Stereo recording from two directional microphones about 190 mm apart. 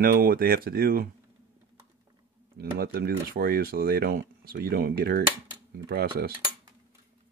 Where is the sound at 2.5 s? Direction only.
55° right (ahead or behind).